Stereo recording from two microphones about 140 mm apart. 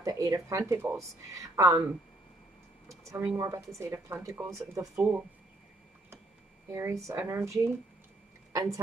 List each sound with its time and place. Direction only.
0.0 s speech: 25° right (ahead or behind)
3.1 s speech: 15° right (ahead or behind)
3.3 s speech: 25° right (ahead or behind)
6.7 s speech: 20° right (ahead or behind)
8.5 s a woman's voice: 25° right (ahead or behind)